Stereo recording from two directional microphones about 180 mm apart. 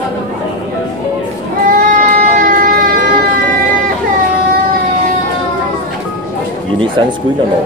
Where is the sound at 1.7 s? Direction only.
50° right (ahead or behind).